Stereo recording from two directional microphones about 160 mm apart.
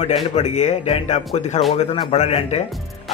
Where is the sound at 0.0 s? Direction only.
45° left (ahead or behind).